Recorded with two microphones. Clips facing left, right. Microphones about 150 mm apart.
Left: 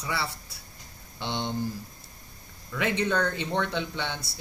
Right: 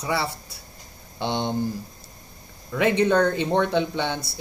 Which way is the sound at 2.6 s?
25° right (ahead or behind).